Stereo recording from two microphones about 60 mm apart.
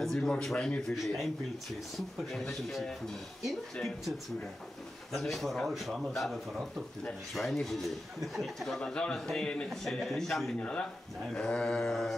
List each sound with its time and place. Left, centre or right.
0.0 s a man's voice: centre
0.9 s a man's voice: centre
5.1 s a man's voice: centre
9.7 s a man's voice: centre
10.6 s a man's voice: centre
11.3 s a sound: centre
11.9 s a man's voice: centre